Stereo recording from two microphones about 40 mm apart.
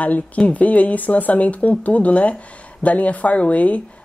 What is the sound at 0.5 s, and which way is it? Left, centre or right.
Speech, left.